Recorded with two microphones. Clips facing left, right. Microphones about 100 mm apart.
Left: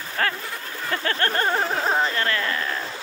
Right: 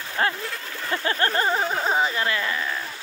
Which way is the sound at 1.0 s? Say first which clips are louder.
Right 1 dB; 20° right (ahead or behind).